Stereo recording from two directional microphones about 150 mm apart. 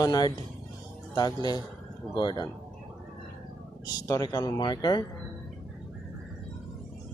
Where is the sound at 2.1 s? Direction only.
30° left (ahead or behind).